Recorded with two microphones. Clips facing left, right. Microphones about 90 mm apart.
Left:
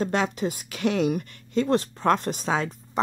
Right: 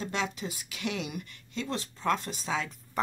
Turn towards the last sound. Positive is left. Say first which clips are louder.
# left 5 dB
turn(degrees=25)  # may be behind; listen again after turning